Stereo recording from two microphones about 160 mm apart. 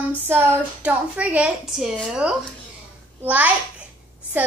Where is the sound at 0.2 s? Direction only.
15° right (ahead or behind).